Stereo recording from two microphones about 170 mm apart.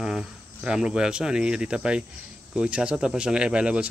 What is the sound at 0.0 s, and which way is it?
Speech, centre (ahead or behind).